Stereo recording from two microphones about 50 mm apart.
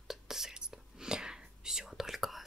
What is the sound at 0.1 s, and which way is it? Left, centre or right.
Whispering, centre.